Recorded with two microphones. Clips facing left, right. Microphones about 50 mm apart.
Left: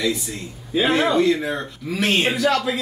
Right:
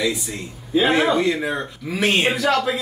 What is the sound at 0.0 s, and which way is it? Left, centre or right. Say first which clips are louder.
Speech: even; centre.